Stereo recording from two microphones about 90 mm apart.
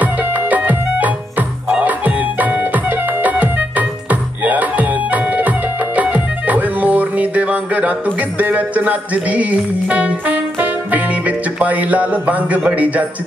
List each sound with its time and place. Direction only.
0.0 s music: 20° right (ahead or behind)